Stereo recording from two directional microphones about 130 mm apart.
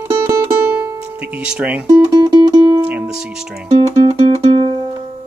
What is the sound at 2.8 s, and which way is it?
Speech, 10° right (ahead or behind).